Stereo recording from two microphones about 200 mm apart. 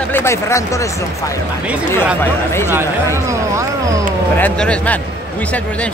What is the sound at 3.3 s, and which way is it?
Speech, 15° right (ahead or behind).